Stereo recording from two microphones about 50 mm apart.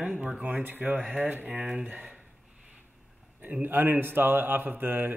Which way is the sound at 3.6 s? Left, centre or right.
Right.